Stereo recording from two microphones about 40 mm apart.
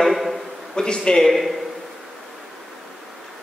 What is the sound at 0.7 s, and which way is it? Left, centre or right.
Speech, left.